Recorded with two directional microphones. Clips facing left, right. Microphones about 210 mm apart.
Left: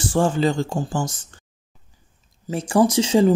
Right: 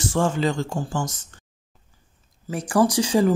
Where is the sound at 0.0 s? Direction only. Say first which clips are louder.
Left 3 dB; 30° left (ahead or behind).